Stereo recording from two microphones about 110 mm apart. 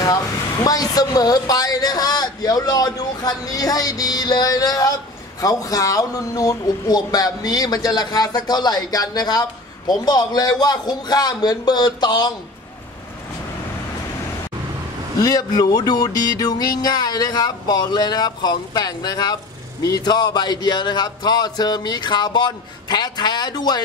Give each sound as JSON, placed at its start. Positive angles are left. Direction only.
{"t": 0.7, "sound": "speech", "side_deg": 35}
{"t": 15.2, "sound": "speech", "side_deg": 35}